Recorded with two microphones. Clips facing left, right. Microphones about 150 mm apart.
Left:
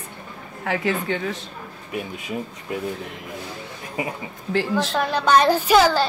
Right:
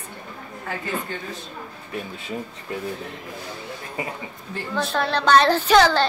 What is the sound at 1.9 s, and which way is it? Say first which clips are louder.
Speech: left 2 dB; 10° left (ahead or behind).